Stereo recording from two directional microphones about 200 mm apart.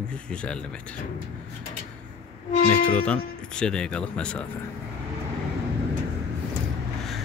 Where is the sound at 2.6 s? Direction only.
40° left (ahead or behind).